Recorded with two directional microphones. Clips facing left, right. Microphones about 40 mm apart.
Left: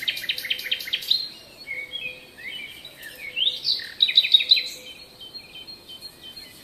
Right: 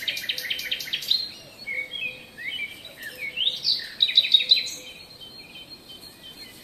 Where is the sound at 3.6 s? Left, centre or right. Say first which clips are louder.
Left 1 dB; centre.